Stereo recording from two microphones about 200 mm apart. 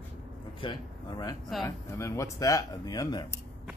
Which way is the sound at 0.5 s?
20° left (ahead or behind).